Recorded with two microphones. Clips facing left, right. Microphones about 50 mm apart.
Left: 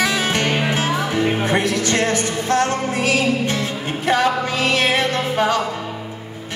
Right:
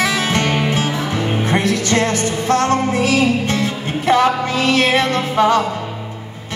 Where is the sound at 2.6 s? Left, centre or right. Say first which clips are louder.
Right 4 dB; right.